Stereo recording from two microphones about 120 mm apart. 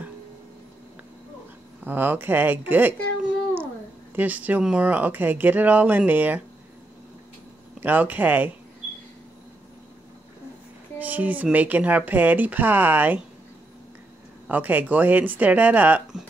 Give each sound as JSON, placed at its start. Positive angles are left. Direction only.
{"t": 1.9, "sound": "speech", "side_deg": -15}
{"t": 7.8, "sound": "speech", "side_deg": -15}
{"t": 11.0, "sound": "speech", "side_deg": -15}
{"t": 14.5, "sound": "speech", "side_deg": -15}